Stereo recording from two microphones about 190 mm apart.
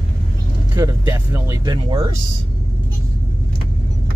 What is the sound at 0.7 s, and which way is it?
Vehicle, 15° right (ahead or behind).